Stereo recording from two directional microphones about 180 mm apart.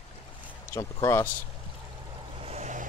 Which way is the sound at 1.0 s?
15° left (ahead or behind).